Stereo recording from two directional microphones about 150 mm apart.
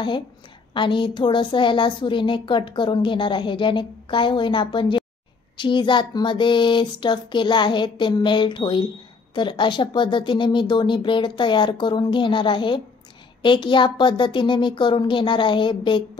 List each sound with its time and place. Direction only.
0.7 s a woman's voice: 30° left (ahead or behind)